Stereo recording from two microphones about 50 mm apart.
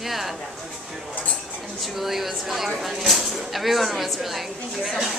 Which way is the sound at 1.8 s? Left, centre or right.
Centre.